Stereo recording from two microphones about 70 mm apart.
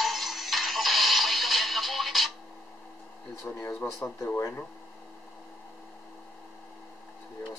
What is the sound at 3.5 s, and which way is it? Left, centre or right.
Speech, left.